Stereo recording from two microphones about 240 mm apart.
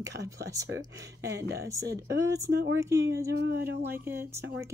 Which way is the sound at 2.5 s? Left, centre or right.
Right.